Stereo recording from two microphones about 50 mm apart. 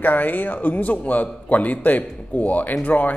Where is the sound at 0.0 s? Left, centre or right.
Left.